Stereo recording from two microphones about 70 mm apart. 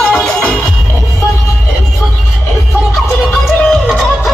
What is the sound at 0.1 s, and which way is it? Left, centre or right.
Music, centre.